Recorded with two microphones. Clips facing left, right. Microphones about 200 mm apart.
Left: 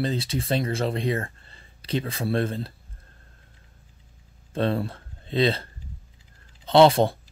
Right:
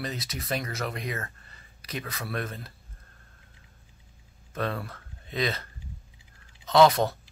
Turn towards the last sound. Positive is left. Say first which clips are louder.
# left 4 dB
turn(degrees=30)  # may be behind; listen again after turning